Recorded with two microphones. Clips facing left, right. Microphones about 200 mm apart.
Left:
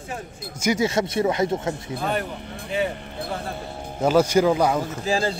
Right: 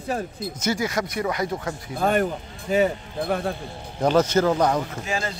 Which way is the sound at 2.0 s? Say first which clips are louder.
Right 7 dB; 50° right (ahead or behind).